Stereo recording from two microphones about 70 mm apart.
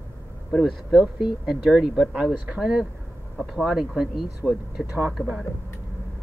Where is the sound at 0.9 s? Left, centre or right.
Centre.